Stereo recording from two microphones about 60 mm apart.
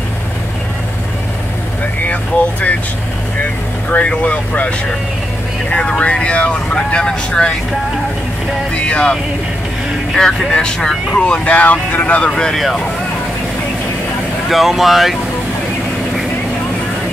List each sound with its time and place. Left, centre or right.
3.9 s speech: left
8.7 s speech: centre
10.1 s speech: centre
12.3 s speech: centre
14.5 s speech: centre